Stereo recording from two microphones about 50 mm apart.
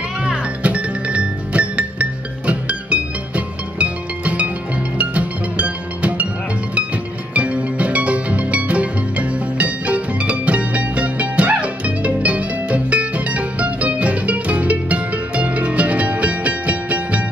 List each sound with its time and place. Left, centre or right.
0.2 s music: right
7.3 s music: right